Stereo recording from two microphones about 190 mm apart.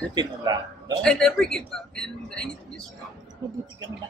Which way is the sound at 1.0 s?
5° left (ahead or behind).